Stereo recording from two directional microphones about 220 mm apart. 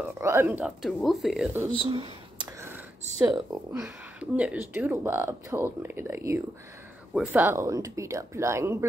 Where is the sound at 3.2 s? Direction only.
15° right (ahead or behind).